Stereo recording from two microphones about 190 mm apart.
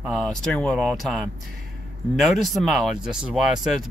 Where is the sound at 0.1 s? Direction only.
Centre (ahead or behind).